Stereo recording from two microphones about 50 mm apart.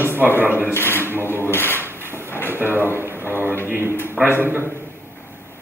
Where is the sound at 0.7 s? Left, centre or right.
Left.